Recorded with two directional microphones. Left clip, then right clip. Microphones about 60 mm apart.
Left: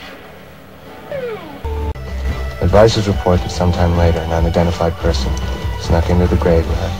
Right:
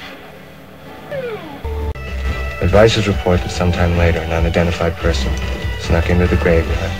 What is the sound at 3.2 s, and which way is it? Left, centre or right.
Speech, centre.